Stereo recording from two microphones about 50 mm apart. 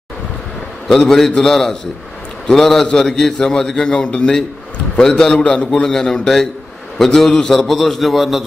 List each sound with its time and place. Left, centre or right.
0.8 s a man's voice: centre
5.7 s a man's voice: centre